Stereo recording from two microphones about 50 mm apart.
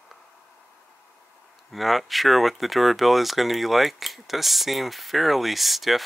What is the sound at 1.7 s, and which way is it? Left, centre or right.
Speech, centre.